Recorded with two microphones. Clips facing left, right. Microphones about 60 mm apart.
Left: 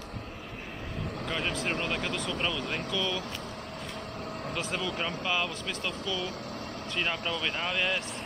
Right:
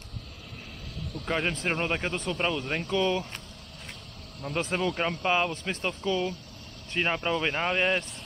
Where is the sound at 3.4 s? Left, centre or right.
Left.